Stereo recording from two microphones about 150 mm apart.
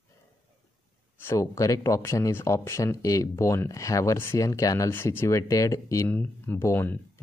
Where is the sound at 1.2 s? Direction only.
20° left (ahead or behind).